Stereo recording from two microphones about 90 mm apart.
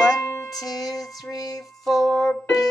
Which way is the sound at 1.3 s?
45° left (ahead or behind).